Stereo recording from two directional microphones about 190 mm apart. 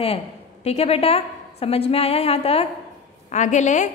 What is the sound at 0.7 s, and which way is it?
A woman's voice, 30° left (ahead or behind).